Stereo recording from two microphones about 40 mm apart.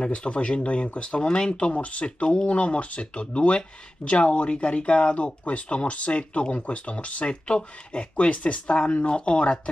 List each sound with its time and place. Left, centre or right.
0.0 s speech: left